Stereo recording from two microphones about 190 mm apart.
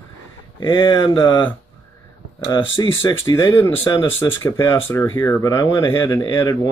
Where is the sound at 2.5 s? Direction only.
25° left (ahead or behind).